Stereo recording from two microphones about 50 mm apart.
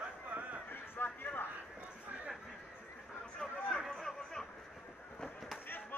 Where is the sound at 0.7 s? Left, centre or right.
Left.